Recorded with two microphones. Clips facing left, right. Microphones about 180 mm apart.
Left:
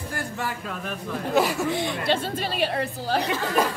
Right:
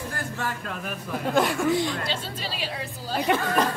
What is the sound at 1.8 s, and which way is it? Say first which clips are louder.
Speech: left 3 dB; 55° left (ahead or behind).